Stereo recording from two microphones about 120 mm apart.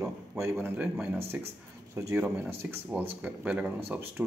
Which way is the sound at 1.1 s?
20° right (ahead or behind).